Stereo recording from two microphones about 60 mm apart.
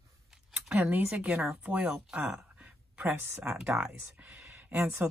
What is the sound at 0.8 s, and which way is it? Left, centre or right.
Speech, right.